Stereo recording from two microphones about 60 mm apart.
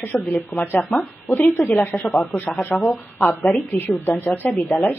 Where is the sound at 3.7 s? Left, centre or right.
Left.